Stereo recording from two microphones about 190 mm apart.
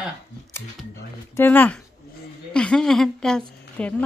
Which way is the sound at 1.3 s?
10° left (ahead or behind).